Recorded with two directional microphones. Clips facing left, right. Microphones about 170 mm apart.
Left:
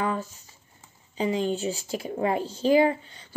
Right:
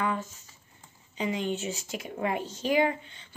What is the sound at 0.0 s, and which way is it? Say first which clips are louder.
Speech: left 2 dB; 35° left (ahead or behind).